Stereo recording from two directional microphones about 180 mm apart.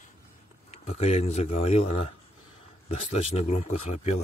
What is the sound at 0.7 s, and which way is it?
Speech, 35° left (ahead or behind).